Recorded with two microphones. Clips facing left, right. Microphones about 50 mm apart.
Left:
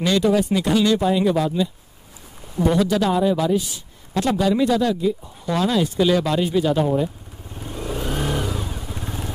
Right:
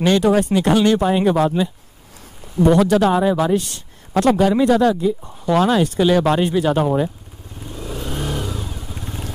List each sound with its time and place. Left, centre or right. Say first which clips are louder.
0.0 s speech: right 3 dB; right
7.5 s vehicle: left 2 dB; left
9.0 s vehicle: even; left